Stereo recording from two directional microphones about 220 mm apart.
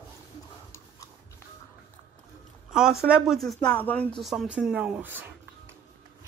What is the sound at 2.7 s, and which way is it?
Speech, centre (ahead or behind).